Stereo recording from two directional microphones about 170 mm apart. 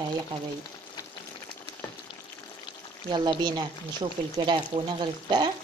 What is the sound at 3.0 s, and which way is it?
Speech, 25° right (ahead or behind).